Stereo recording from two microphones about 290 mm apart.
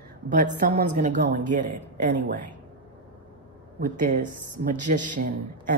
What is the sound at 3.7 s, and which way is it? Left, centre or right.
Speech, right.